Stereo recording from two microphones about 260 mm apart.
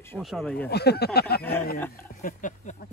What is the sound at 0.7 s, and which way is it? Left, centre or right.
Speech, left.